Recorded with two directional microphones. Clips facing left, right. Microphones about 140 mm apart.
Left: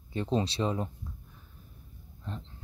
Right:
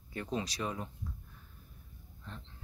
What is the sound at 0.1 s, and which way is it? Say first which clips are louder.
Speech: left 7 dB; 25° left (ahead or behind).